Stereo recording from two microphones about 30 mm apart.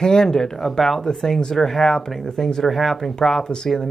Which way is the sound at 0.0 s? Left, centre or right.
Left.